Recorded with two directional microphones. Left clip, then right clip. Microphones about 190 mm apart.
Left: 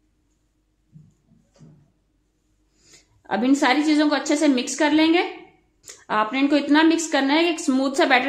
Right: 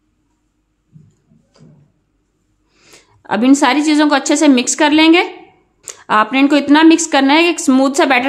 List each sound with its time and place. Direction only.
2.7 s a woman's voice: 35° right (ahead or behind)